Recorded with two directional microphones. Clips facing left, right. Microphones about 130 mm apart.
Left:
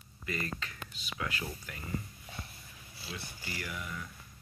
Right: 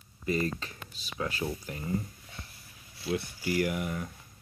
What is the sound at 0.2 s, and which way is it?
Speech, 35° right (ahead or behind).